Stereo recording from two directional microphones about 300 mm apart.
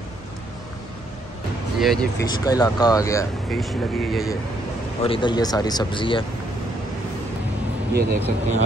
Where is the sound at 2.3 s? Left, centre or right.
Centre.